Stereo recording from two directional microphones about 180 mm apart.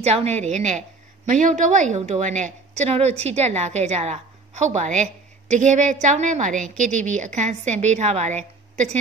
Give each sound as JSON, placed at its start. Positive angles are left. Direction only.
{"t": 0.0, "sound": "a woman's voice", "side_deg": -35}